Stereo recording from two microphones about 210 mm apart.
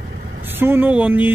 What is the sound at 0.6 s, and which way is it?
Speech, 10° right (ahead or behind).